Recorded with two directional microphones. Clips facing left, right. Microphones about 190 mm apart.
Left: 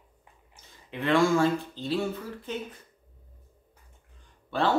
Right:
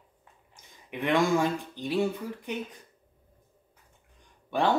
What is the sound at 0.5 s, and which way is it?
Speech, 15° right (ahead or behind).